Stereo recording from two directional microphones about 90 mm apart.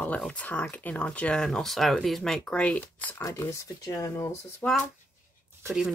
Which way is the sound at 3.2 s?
40° left (ahead or behind).